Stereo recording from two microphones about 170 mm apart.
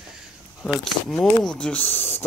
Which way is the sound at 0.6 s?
Centre (ahead or behind).